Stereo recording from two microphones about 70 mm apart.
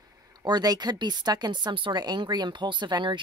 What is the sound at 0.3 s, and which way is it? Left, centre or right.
Speech, right.